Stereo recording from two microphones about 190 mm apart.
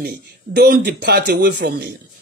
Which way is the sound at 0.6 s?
60° right (ahead or behind).